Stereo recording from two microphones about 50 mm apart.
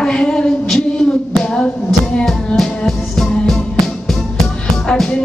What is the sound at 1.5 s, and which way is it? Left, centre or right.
Music, centre.